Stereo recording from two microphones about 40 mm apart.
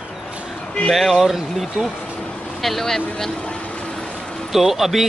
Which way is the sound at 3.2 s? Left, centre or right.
Left.